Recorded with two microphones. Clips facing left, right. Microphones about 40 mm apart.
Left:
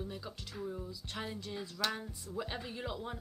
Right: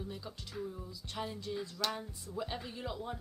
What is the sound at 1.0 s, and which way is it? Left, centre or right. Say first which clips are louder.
Speech: right 5 dB; centre.